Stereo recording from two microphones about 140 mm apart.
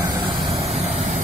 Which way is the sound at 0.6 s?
45° right (ahead or behind).